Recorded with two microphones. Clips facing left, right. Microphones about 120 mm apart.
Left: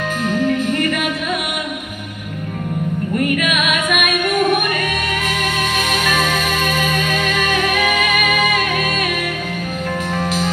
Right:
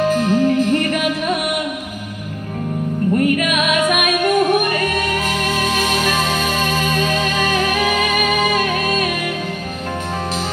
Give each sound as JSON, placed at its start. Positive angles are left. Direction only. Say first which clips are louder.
{"t": 0.0, "sound": "music", "louder": "right 4 dB", "side_deg": -35}
{"t": 3.3, "sound": "music", "louder": "right 2 dB", "side_deg": -35}
{"t": 5.9, "sound": "music", "louder": "even", "side_deg": -30}